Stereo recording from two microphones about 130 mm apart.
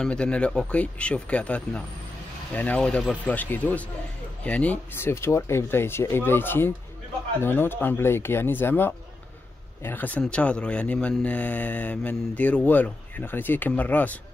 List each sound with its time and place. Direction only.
0.0 s speech: 10° left (ahead or behind)